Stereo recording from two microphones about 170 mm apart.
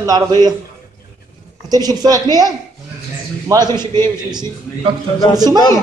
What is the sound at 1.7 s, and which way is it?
Speech, 20° right (ahead or behind).